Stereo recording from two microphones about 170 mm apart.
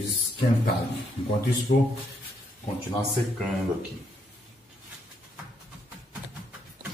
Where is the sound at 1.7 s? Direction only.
45° left (ahead or behind).